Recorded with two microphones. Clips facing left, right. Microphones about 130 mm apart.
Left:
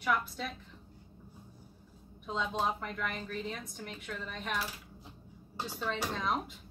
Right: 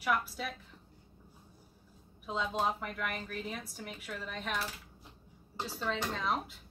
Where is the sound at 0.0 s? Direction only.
5° right (ahead or behind).